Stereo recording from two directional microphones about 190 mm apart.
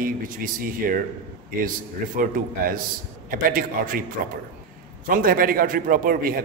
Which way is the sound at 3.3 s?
45° right (ahead or behind).